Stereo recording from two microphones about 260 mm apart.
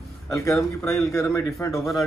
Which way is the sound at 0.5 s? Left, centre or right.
Centre.